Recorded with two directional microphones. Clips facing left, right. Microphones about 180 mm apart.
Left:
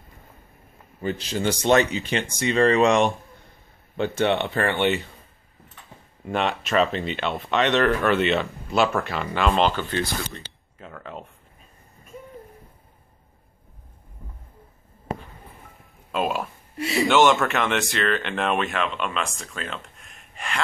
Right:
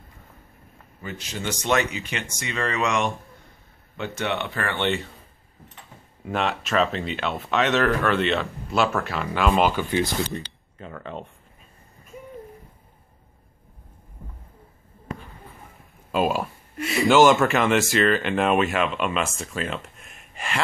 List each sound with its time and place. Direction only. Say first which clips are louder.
1.0 s speech: left 6 dB; 30° left (ahead or behind)
4.7 s speech: even; 5° left (ahead or behind)
6.2 s speech: left 1 dB; centre (ahead or behind)
10.4 s speech: right 3 dB; centre (ahead or behind)
16.1 s speech: right 2 dB; centre (ahead or behind)